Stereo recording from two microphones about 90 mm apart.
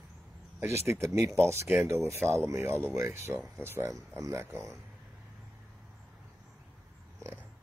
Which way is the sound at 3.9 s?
40° right (ahead or behind).